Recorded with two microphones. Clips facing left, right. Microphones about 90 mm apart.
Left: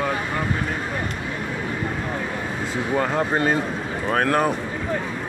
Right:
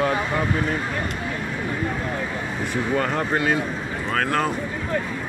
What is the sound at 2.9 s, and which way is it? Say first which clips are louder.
Speech: left 2 dB; 15° left (ahead or behind).